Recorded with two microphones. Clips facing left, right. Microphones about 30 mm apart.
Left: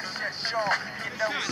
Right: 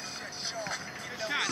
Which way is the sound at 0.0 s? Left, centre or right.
Left.